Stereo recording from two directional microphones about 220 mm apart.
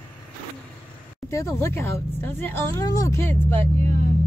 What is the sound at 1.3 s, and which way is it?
A woman's voice, 15° left (ahead or behind).